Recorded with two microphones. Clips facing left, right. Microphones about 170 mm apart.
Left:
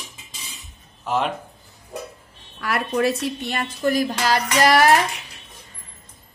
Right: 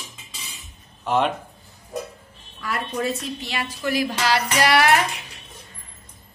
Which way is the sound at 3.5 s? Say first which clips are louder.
Left 3 dB; 50° left (ahead or behind).